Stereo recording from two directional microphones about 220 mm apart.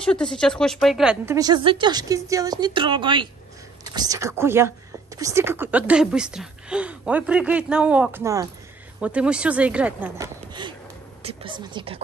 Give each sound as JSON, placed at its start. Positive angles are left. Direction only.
{"t": 0.0, "sound": "speech", "side_deg": 5}
{"t": 1.3, "sound": "speech", "side_deg": -20}